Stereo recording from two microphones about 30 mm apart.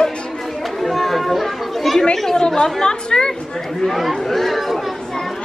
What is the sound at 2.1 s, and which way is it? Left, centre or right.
A woman's voice, centre.